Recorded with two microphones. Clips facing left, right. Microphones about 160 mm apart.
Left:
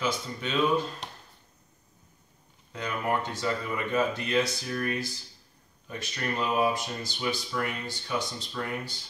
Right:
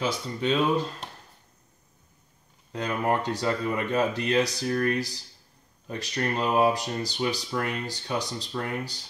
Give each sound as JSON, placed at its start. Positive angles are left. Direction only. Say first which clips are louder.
{"t": 0.0, "sound": "speech", "louder": "right 3 dB", "side_deg": -35}
{"t": 2.7, "sound": "speech", "louder": "right 3 dB", "side_deg": -35}